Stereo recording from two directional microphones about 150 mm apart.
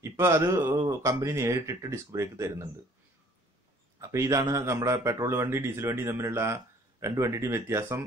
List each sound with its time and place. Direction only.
0.0 s speech: 20° right (ahead or behind)
4.0 s speech: 20° right (ahead or behind)